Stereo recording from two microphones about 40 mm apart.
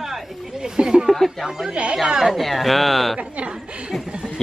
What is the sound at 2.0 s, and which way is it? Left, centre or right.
Speech, centre.